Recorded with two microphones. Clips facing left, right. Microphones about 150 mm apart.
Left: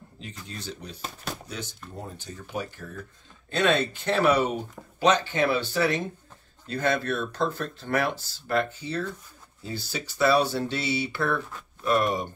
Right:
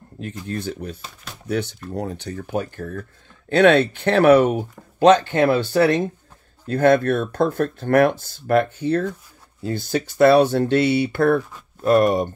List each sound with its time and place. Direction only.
0.2 s speech: 55° right (ahead or behind)
1.5 s speech: 65° right (ahead or behind); by 12.3 s 50° right (ahead or behind)